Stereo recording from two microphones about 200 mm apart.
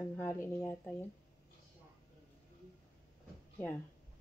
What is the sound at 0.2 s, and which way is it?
Speech, 15° left (ahead or behind).